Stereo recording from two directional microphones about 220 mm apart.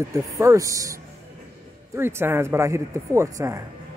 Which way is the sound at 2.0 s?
10° right (ahead or behind).